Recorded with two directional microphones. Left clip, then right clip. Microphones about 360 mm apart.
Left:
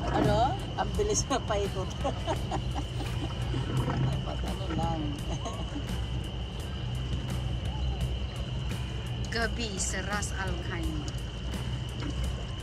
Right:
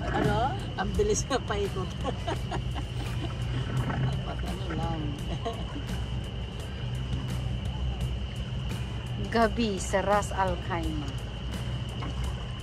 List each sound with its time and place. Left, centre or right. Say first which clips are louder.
0.0 s music: left 1 dB; centre
2.0 s speech: left 2 dB; centre
3.7 s speech: even; centre
9.3 s speech: right 7 dB; centre